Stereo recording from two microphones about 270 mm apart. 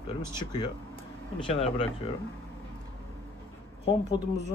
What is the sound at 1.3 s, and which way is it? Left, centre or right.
Speech, centre.